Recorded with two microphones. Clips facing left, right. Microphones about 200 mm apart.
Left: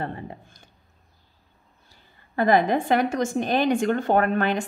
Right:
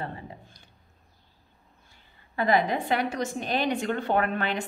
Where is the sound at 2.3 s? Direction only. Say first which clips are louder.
Left 4 dB; 50° left (ahead or behind).